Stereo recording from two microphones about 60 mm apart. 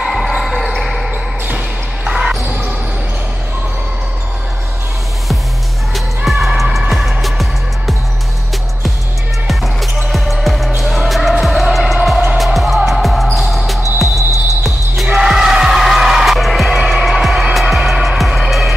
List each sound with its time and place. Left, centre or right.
0.0 s basketball bounce: centre
2.0 s basketball bounce: centre
5.9 s music: centre
9.5 s basketball bounce: centre
10.8 s music: centre
12.5 s basketball bounce: centre
14.0 s music: left
15.1 s music: centre